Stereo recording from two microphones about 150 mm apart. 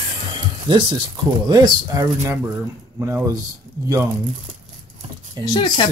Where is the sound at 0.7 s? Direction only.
30° right (ahead or behind); by 3.3 s 15° right (ahead or behind).